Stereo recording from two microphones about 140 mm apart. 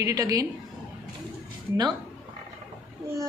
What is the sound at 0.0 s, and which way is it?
Speech, 25° right (ahead or behind).